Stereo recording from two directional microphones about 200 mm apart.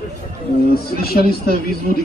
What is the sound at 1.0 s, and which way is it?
Speech, 50° left (ahead or behind).